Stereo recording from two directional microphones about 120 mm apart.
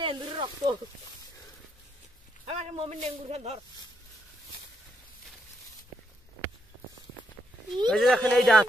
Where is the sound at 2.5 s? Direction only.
60° right (ahead or behind).